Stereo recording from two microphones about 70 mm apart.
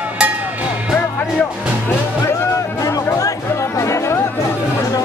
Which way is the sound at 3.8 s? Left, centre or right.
Left.